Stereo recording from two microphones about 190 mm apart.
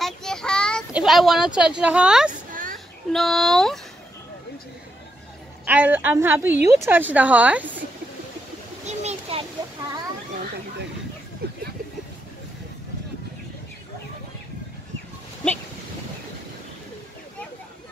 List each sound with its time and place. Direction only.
0.0 s child singing: 5° left (ahead or behind)
0.9 s speech: centre (ahead or behind)
2.5 s a sound: 45° right (ahead or behind)
3.1 s speech: centre (ahead or behind)
5.7 s a woman's voice: 10° right (ahead or behind)
8.8 s splash: 35° right (ahead or behind)
11.4 s vehicle: 55° right (ahead or behind)